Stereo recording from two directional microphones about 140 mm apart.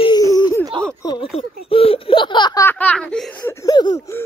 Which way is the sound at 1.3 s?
45° left (ahead or behind).